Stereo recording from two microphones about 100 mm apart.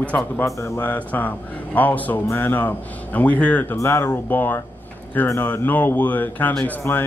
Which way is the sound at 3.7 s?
25° left (ahead or behind).